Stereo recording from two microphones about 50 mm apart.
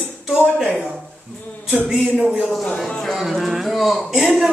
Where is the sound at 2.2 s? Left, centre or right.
Centre.